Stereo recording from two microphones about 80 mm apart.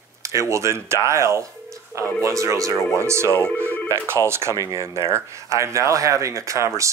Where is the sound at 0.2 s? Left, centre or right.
Right.